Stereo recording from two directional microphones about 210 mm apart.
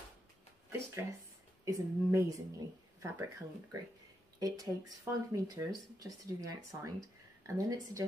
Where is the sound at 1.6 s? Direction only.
15° right (ahead or behind).